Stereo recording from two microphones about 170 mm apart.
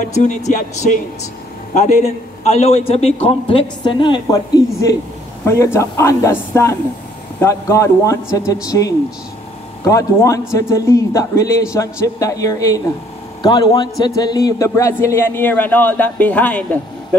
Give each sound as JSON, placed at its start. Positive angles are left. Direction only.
{"t": 0.0, "sound": "a man's voice", "side_deg": 45}